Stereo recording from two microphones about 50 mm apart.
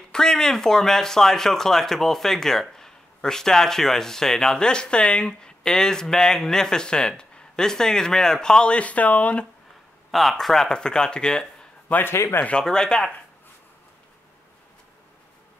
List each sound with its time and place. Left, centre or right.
0.1 s speech: centre
10.1 s speech: centre
12.1 s speech: left
12.6 s speech: centre